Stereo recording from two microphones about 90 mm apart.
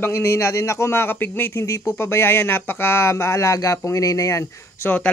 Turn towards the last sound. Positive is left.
turn(degrees=30)  # may be behind; listen again after turning